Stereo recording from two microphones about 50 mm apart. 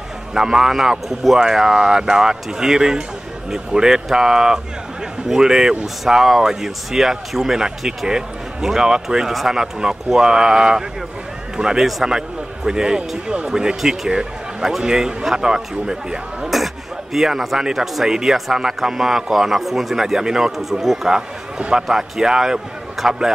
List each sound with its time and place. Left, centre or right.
0.3 s speech: centre
16.4 s speech: centre
21.5 s speech: centre
21.8 s speech: centre